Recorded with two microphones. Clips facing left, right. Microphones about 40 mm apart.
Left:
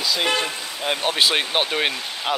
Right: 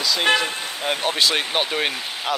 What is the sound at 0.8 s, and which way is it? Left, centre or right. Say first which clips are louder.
Speech: even; left.